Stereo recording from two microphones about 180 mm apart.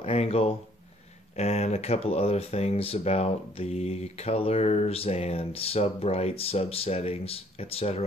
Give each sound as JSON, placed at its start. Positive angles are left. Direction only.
{"t": 0.0, "sound": "speech", "side_deg": 35}